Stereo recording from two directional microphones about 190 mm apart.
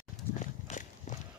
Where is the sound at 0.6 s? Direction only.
40° left (ahead or behind).